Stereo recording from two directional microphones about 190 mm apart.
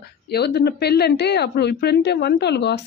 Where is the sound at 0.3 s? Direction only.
60° left (ahead or behind).